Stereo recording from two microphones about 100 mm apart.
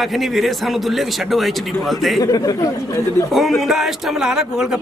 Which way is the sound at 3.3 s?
Centre (ahead or behind).